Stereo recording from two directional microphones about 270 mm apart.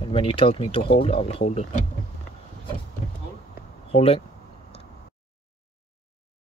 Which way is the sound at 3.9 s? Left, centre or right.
Left.